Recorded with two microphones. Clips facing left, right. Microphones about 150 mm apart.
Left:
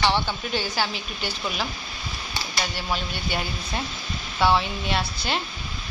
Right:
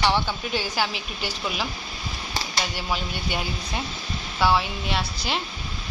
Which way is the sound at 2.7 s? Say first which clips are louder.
Even; 10° right (ahead or behind).